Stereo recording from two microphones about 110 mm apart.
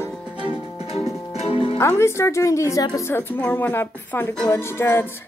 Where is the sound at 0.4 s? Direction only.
60° left (ahead or behind).